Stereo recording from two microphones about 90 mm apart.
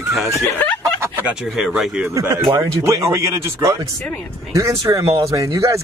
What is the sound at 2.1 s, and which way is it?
Speech, 35° right (ahead or behind).